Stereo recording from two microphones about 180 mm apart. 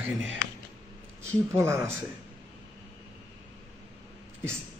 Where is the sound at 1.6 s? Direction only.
15° right (ahead or behind).